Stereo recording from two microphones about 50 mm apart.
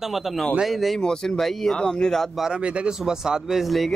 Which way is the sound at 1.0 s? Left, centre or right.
Centre.